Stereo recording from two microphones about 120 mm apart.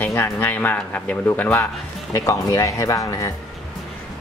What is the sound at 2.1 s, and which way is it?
Speech, 25° left (ahead or behind).